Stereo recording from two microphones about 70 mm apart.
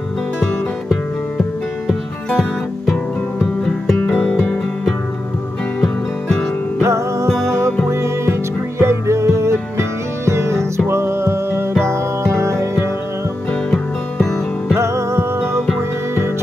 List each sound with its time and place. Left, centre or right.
3.6 s music: centre
4.1 s music: left
4.4 s music: centre
6.8 s music: right
13.7 s music: centre
14.8 s music: right